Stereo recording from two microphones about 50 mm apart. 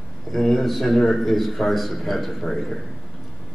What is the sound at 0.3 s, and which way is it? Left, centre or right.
A man's voice, centre.